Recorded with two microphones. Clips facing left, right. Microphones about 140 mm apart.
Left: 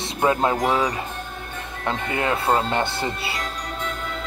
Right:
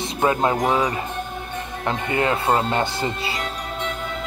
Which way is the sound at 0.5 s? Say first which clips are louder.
Right 1 dB; 20° right (ahead or behind).